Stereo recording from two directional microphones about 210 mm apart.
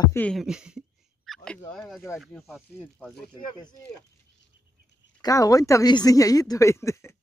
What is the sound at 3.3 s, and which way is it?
Speech, 20° left (ahead or behind).